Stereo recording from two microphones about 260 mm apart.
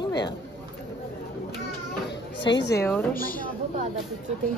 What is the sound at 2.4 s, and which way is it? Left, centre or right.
Speech, left.